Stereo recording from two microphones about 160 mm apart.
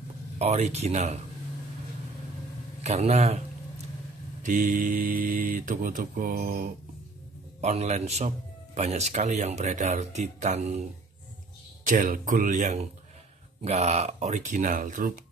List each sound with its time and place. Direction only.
0.4 s speech: 40° right (ahead or behind)
2.8 s speech: 45° right (ahead or behind)
4.4 s speech: 55° right (ahead or behind)
7.6 s speech: 45° right (ahead or behind)
11.8 s speech: 55° right (ahead or behind)